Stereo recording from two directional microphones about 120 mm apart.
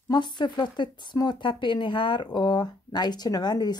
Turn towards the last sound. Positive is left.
turn(degrees=35)  # may be behind; listen again after turning